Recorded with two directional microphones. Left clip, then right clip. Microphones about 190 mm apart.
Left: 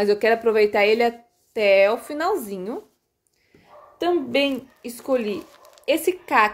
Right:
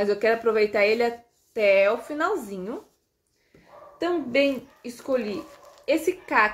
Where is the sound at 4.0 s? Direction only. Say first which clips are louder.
Left 2 dB; 50° left (ahead or behind).